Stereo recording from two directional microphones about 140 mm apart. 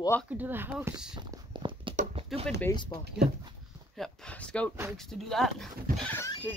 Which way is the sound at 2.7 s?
35° left (ahead or behind).